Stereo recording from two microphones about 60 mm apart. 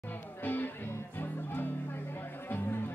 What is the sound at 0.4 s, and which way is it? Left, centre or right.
Music, left.